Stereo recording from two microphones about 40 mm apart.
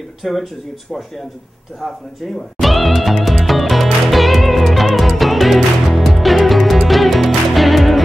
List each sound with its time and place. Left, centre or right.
0.2 s speech: centre
1.8 s speech: centre
2.6 s music: centre